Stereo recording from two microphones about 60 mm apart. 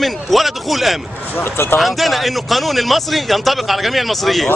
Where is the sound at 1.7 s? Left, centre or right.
Centre.